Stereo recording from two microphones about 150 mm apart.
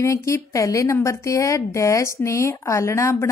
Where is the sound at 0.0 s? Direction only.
20° left (ahead or behind).